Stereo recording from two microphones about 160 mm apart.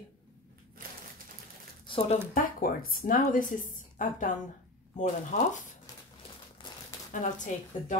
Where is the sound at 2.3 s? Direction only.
60° left (ahead or behind).